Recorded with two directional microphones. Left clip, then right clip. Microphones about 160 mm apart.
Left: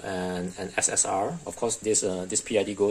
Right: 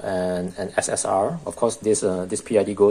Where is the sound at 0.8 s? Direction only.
10° left (ahead or behind).